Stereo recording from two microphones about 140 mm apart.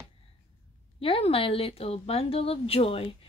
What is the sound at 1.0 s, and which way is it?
Speech, 40° left (ahead or behind).